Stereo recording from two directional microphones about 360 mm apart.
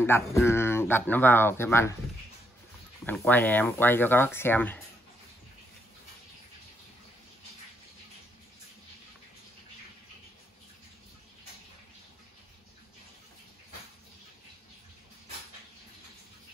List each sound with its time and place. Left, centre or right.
0.0 s speech: centre
3.1 s speech: centre